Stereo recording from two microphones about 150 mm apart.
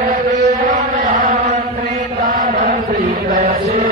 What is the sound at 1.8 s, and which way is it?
Chant, 65° right (ahead or behind).